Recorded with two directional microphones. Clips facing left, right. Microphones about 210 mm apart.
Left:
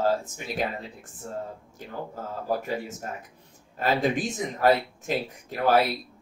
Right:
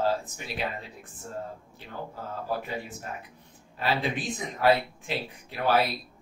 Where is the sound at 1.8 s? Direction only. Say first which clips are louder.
Left 3 dB; 45° left (ahead or behind).